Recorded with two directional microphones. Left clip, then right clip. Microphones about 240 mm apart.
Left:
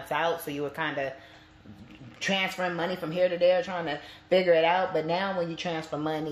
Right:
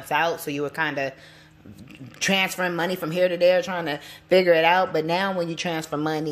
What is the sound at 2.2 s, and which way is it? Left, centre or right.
Speech, right.